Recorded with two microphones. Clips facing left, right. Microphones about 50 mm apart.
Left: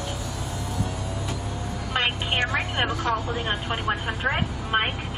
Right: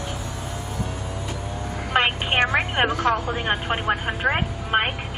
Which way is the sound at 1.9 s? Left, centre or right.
Right.